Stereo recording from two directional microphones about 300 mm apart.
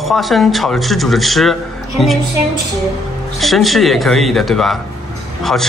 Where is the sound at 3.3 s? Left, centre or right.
Centre.